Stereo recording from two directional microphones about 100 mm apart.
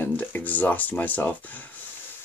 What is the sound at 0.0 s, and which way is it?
Speech, 20° left (ahead or behind).